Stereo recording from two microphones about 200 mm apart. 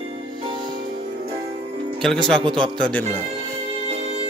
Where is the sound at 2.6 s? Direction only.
5° left (ahead or behind).